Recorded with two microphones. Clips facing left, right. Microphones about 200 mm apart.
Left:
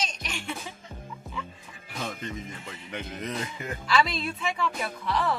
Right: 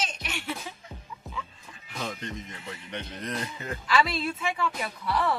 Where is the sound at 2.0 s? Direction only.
5° left (ahead or behind).